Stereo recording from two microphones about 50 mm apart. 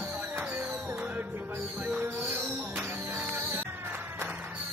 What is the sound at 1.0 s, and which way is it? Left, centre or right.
Music, right.